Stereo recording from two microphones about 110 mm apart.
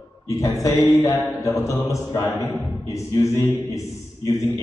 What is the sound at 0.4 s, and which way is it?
A man's voice, 30° left (ahead or behind).